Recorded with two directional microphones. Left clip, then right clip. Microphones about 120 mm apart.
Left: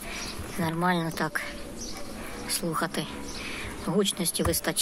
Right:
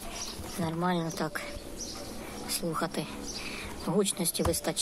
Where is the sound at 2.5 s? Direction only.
10° right (ahead or behind).